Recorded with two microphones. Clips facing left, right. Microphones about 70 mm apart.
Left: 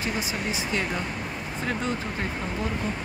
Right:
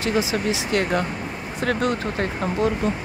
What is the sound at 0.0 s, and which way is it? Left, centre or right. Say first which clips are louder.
Speech: right 7 dB; right.